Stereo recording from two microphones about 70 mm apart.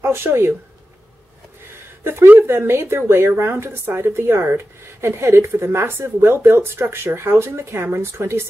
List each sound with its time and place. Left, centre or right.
0.0 s speech: right
2.0 s speech: right